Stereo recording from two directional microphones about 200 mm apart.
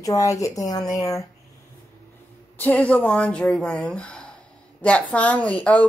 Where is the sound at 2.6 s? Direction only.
10° left (ahead or behind).